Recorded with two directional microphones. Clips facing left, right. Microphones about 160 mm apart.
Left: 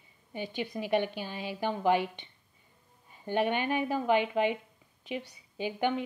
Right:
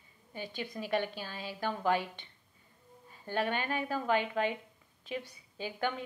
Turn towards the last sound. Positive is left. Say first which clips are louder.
# left 5 dB
turn(degrees=15)  # may be behind; listen again after turning